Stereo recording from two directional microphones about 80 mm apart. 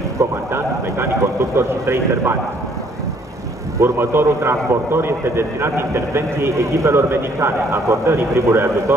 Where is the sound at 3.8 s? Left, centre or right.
Right.